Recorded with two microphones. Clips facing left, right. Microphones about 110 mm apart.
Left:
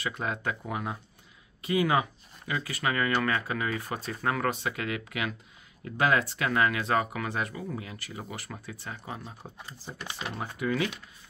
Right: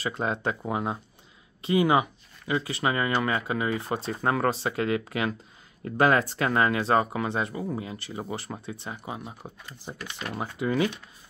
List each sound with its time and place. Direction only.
0.0 s speech: 30° right (ahead or behind)
9.9 s speech: 15° left (ahead or behind)
10.6 s speech: 25° right (ahead or behind)